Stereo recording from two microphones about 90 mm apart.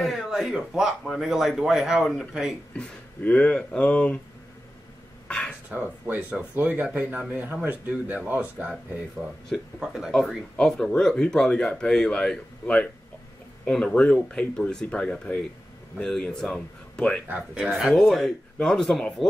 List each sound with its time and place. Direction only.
0.0 s a man's voice: centre (ahead or behind)
2.8 s speech: 15° left (ahead or behind)
5.7 s speech: 15° right (ahead or behind)
9.8 s a man's voice: 5° right (ahead or behind)